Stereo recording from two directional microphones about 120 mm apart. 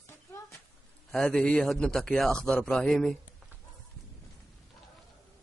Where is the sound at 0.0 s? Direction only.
25° left (ahead or behind).